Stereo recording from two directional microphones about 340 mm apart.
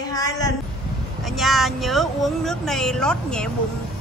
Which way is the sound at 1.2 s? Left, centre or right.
Centre.